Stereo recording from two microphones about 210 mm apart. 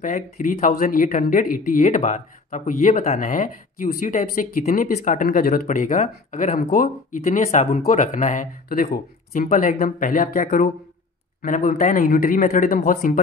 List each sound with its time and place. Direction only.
0.0 s speech: 40° left (ahead or behind)